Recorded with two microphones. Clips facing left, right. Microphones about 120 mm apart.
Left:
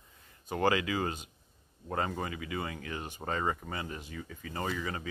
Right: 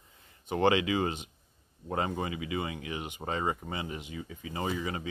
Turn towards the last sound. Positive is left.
turn(degrees=-20)  # may be behind; listen again after turning